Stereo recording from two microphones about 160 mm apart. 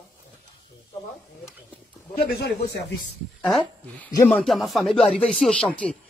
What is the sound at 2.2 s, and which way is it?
Speech, 90° left.